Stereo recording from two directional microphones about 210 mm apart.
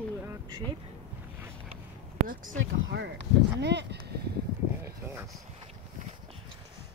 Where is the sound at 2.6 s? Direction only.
60° right (ahead or behind).